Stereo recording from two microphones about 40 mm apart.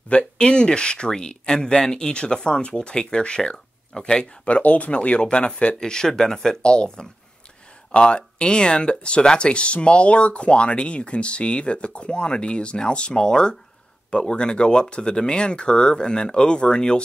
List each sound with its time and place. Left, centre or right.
0.4 s speech: left
5.8 s speech: centre
6.6 s speech: left